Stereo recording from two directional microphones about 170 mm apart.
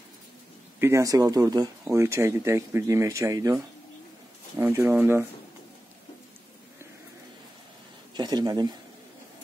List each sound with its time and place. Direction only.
0.7 s speech: 15° right (ahead or behind)
4.6 s speech: 15° right (ahead or behind)
8.1 s speech: 25° right (ahead or behind)